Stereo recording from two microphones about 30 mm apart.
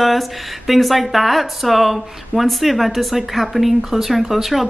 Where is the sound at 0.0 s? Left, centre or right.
Centre.